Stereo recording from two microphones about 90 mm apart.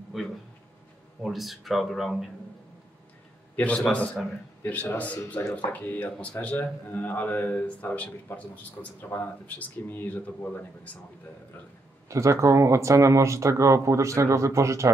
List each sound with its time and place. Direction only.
0.1 s speech: centre (ahead or behind)
3.5 s speech: 15° left (ahead or behind)
8.8 s speech: 40° left (ahead or behind)
9.1 s speech: 20° left (ahead or behind)
12.1 s speech: 35° right (ahead or behind)